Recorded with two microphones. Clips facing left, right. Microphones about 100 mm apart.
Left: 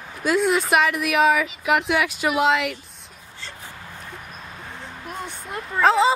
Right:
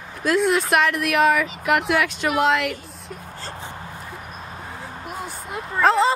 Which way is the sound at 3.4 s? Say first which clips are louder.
Right 3 dB; 40° right (ahead or behind).